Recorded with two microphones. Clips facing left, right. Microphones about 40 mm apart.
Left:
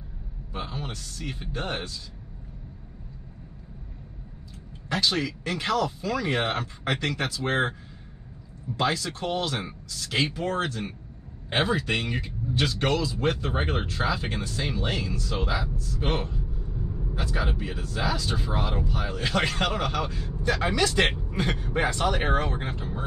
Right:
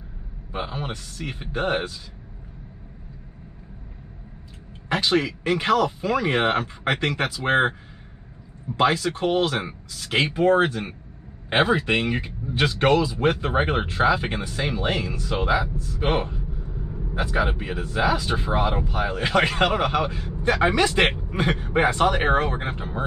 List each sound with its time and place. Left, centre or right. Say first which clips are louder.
0.5 s speech: right 5 dB; right
4.8 s speech: right 4 dB; right
8.7 s speech: right 6 dB; right